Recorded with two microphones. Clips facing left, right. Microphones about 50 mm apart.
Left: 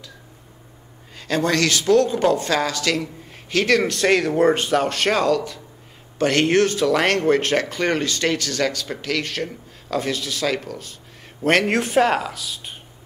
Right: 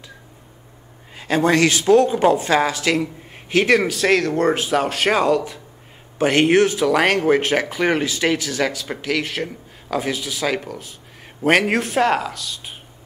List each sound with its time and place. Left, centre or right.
1.1 s speech: centre
3.9 s speech: centre